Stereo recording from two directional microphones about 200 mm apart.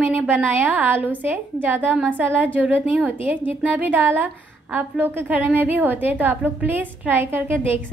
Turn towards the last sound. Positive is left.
turn(degrees=-10)  # may be behind; listen again after turning